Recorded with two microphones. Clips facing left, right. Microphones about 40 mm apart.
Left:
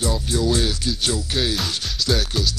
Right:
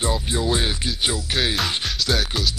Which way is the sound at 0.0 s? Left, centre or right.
Right.